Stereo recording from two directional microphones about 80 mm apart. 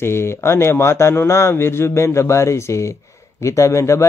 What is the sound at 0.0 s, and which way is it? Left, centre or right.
A man's voice, left.